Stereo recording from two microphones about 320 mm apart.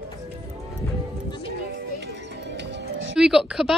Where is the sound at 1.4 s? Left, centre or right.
Right.